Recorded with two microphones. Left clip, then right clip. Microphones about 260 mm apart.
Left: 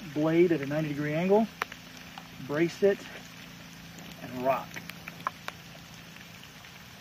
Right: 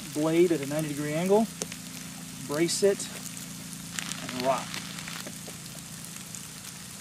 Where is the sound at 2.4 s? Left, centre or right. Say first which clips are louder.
Right 1 dB; centre.